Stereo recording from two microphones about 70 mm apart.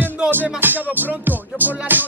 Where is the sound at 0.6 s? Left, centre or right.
Right.